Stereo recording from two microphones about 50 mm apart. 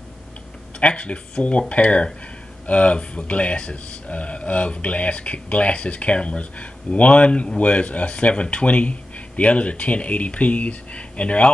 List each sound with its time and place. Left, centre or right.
0.7 s speech: left